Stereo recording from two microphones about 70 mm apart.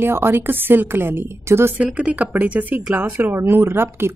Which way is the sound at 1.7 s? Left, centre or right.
Centre.